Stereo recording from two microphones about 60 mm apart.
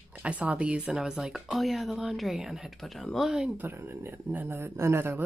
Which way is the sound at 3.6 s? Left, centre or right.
Right.